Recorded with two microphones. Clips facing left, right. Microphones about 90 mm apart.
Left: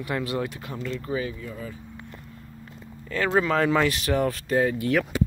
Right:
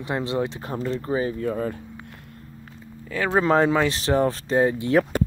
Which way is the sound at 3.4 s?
30° right (ahead or behind).